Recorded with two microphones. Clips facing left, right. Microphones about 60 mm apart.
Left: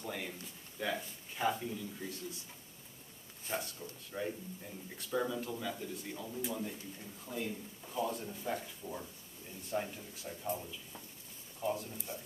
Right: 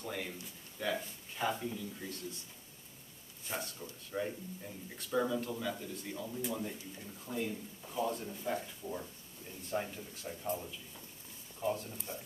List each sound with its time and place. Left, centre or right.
0.0 s speech: centre
3.4 s a man's voice: centre
11.6 s speech: centre